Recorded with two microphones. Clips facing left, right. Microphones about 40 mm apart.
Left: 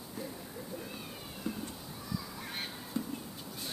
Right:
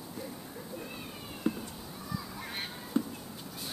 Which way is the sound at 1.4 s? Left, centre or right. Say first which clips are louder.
Right 6 dB; right.